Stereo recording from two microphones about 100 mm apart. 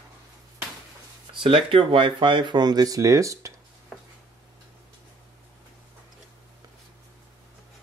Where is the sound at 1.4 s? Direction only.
60° right (ahead or behind); by 3.5 s 30° right (ahead or behind).